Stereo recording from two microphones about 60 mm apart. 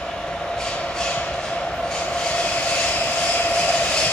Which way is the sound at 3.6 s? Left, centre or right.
Centre.